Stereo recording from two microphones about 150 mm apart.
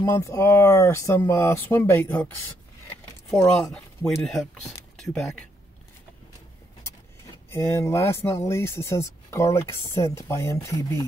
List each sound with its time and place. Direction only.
0.1 s speech: 20° left (ahead or behind); by 5.4 s centre (ahead or behind)
7.5 s speech: 20° left (ahead or behind)